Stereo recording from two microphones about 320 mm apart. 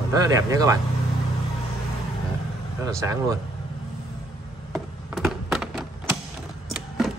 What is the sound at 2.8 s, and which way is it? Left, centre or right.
Speech, centre.